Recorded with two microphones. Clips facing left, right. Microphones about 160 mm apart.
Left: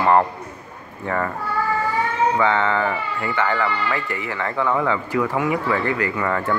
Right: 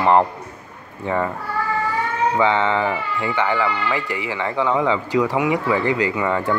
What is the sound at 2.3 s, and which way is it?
Speech, 20° right (ahead or behind).